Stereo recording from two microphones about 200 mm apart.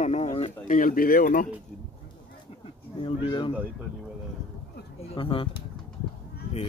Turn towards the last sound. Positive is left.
turn(degrees=25)  # may be behind; listen again after turning